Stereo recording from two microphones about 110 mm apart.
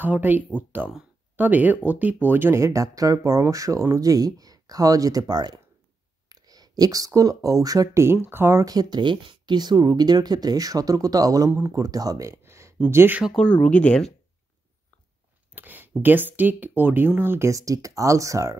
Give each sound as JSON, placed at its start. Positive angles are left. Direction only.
{"t": 0.0, "sound": "speech", "side_deg": -15}
{"t": 8.6, "sound": "speech", "side_deg": -40}
{"t": 13.4, "sound": "speech", "side_deg": 10}
{"t": 15.5, "sound": "a sound", "side_deg": -15}
{"t": 16.0, "sound": "speech", "side_deg": -15}